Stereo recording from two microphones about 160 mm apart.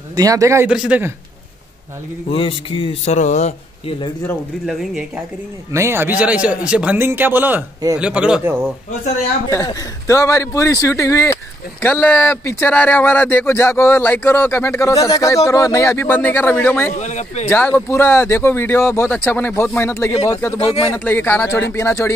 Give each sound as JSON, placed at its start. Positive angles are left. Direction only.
{"t": 0.1, "sound": "a man's voice", "side_deg": -20}
{"t": 0.7, "sound": "speech", "side_deg": -5}
{"t": 2.2, "sound": "a man's voice", "side_deg": 35}
{"t": 4.6, "sound": "speech", "side_deg": 0}
{"t": 5.7, "sound": "speech", "side_deg": -15}
{"t": 9.7, "sound": "speech", "side_deg": 20}
{"t": 17.0, "sound": "speech", "side_deg": 45}
{"t": 17.5, "sound": "speech", "side_deg": 10}
{"t": 20.5, "sound": "a man's voice", "side_deg": 35}
{"t": 20.9, "sound": "speech", "side_deg": 10}